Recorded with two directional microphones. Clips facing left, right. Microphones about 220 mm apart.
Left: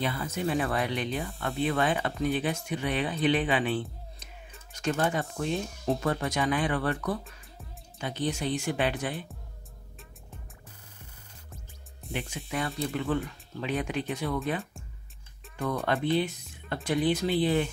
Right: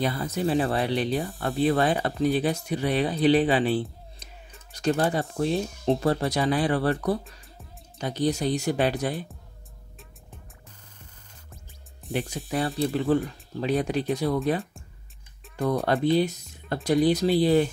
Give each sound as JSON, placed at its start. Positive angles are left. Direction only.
{"t": 0.0, "sound": "speech", "side_deg": -40}
{"t": 12.1, "sound": "speech", "side_deg": -35}
{"t": 15.5, "sound": "speech", "side_deg": -35}